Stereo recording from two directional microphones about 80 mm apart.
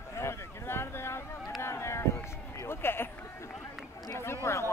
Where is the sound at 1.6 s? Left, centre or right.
Left.